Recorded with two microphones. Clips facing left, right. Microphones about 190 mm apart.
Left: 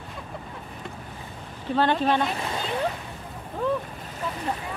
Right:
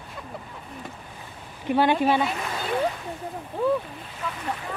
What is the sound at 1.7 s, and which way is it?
Speech, 10° right (ahead or behind).